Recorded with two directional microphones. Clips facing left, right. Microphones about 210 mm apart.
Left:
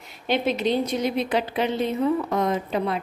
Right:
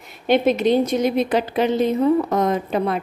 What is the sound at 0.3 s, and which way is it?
A woman's voice, 50° right (ahead or behind).